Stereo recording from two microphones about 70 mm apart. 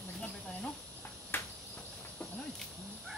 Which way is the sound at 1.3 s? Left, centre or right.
Left.